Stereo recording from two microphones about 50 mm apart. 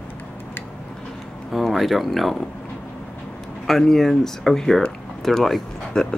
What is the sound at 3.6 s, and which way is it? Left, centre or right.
Speech, centre.